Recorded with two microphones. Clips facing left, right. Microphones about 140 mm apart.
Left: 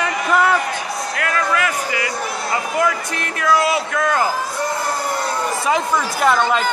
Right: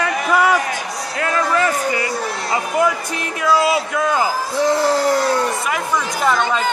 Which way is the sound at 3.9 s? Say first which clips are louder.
Even; 10° right (ahead or behind).